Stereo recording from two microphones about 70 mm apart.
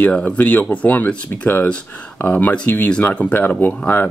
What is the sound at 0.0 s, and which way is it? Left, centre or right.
Speech, centre.